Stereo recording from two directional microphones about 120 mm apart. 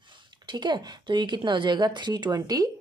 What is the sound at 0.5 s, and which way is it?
Speech, 40° right (ahead or behind).